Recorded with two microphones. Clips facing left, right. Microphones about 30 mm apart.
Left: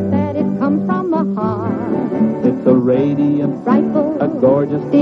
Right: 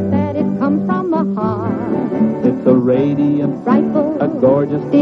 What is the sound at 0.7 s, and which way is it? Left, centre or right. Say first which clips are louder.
Music: even; centre.